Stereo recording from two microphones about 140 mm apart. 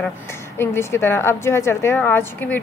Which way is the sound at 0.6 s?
20° left (ahead or behind).